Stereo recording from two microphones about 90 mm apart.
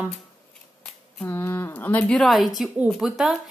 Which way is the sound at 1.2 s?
25° left (ahead or behind).